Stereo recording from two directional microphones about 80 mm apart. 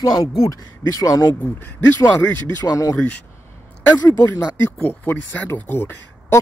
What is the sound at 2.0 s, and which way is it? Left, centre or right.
Speech, left.